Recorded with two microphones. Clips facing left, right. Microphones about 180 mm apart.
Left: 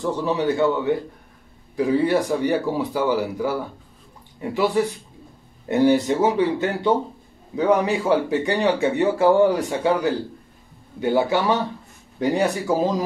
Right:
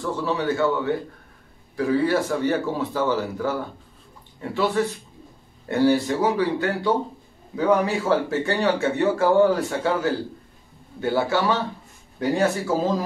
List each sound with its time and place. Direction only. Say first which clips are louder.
0.0 s speech: left 3 dB; 20° left (ahead or behind)